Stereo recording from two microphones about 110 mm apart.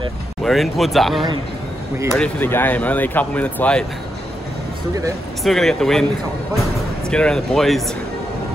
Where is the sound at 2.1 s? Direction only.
15° left (ahead or behind).